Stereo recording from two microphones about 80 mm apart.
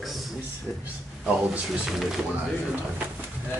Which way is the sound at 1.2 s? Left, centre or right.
Centre.